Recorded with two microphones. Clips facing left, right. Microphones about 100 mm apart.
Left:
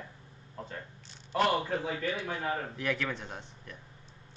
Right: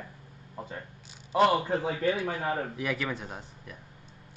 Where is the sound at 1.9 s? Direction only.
40° right (ahead or behind).